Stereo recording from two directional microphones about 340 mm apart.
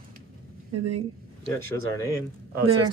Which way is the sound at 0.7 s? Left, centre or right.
Right.